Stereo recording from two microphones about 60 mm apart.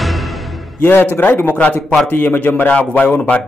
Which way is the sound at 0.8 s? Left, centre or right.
Left.